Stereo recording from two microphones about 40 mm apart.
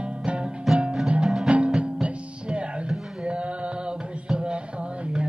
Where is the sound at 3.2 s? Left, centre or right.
Right.